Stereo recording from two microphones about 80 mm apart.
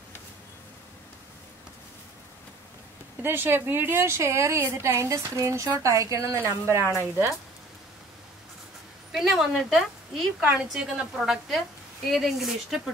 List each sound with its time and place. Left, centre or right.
3.2 s a woman's voice: right
9.1 s a woman's voice: centre
10.4 s a woman's voice: centre
10.8 s a woman's voice: centre